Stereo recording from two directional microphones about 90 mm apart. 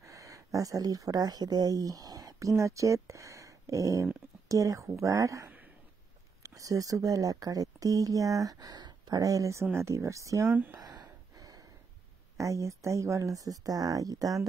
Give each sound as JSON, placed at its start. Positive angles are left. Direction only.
{"t": 0.0, "sound": "speech", "side_deg": -35}
{"t": 6.5, "sound": "speech", "side_deg": -40}
{"t": 10.7, "sound": "gasp", "side_deg": -50}
{"t": 12.4, "sound": "speech", "side_deg": -35}